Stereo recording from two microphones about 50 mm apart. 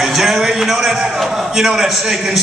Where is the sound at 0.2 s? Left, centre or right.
Centre.